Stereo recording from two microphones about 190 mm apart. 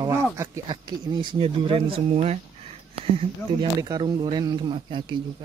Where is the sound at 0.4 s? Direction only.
20° right (ahead or behind).